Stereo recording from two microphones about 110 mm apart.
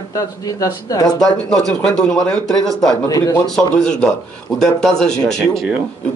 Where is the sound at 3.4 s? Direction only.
5° left (ahead or behind).